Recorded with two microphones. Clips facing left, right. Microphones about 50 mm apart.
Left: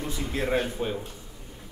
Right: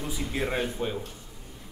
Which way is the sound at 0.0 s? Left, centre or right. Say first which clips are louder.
Left 1 dB; centre.